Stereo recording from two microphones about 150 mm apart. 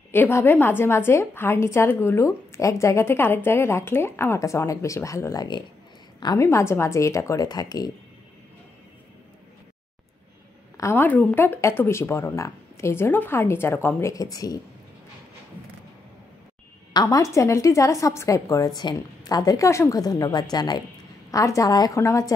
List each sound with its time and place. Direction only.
0.1 s a woman's voice: 15° left (ahead or behind)
10.8 s a woman's voice: 15° left (ahead or behind)
16.9 s speech: 25° left (ahead or behind)